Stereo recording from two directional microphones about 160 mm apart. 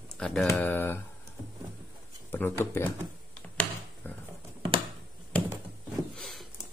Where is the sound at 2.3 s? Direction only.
15° left (ahead or behind).